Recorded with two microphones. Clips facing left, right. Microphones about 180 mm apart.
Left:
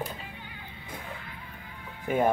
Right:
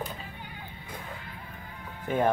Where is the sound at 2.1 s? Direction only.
10° left (ahead or behind).